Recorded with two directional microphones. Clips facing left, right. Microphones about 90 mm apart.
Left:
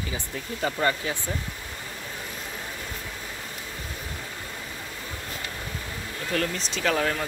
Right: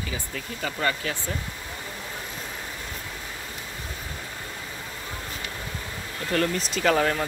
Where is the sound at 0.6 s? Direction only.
25° left (ahead or behind).